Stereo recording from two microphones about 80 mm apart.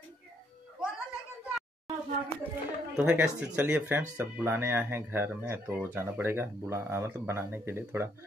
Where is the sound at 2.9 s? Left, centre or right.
Centre.